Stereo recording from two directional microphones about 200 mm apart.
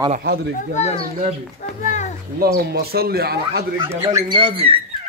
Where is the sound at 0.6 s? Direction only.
35° left (ahead or behind).